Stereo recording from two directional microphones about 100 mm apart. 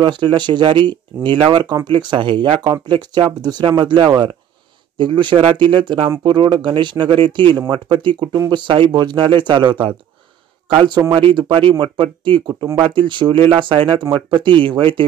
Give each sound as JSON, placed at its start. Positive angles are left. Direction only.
{"t": 0.0, "sound": "speech", "side_deg": -50}
{"t": 10.7, "sound": "speech", "side_deg": -65}